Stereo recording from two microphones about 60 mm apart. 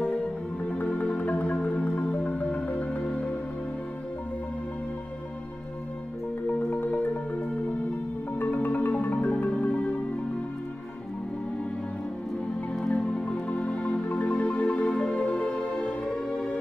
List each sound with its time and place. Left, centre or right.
0.7 s music: left
6.7 s marimba: left
8.4 s music: left
9.0 s marimba: left
9.3 s music: left
12.7 s music: centre